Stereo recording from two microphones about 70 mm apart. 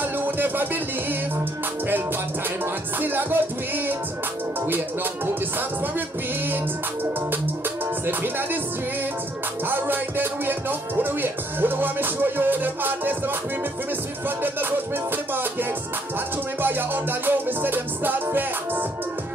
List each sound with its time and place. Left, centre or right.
0.0 s music: right
2.6 s music: right
8.1 s music: right
9.7 s music: right
16.6 s music: right